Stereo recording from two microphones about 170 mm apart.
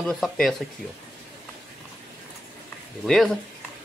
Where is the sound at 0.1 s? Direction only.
Centre (ahead or behind).